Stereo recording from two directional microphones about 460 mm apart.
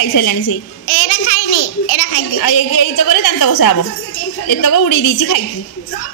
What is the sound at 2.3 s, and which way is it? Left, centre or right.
Speech, left.